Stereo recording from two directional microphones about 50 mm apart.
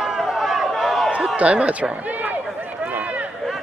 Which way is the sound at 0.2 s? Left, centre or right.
Centre.